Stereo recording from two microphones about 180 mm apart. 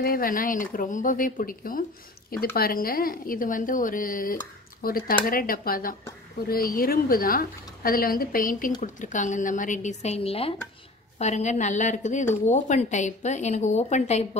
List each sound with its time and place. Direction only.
0.0 s a woman's voice: 55° left (ahead or behind)